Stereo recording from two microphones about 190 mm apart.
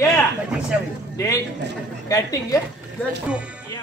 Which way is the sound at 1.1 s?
20° left (ahead or behind).